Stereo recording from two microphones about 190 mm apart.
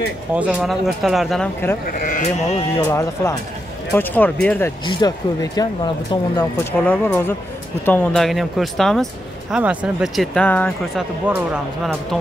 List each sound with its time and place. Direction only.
0.3 s speech: 5° right (ahead or behind)
2.0 s speech: 45° left (ahead or behind)
2.8 s speech: 15° left (ahead or behind)
4.8 s speech: 25° left (ahead or behind); by 11.1 s 10° left (ahead or behind)
11.2 s speech: 5° right (ahead or behind)